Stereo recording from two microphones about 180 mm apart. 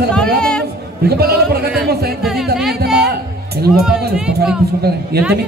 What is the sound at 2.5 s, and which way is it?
Music, centre (ahead or behind).